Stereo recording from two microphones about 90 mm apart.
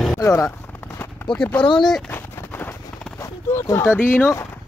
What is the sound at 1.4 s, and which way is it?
Speech, 15° left (ahead or behind).